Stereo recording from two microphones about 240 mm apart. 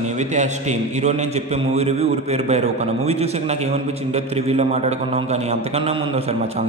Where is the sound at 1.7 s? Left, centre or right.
Right.